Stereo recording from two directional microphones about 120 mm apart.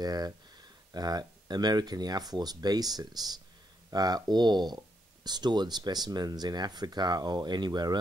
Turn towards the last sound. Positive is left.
turn(degrees=-35)  # may be behind; listen again after turning